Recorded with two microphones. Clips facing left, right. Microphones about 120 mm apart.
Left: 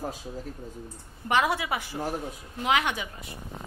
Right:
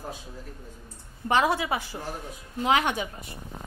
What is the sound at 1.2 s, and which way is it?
A woman's voice, 30° right (ahead or behind).